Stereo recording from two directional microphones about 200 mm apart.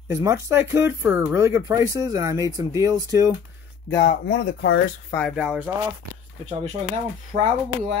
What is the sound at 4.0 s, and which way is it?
Speech, 55° left (ahead or behind).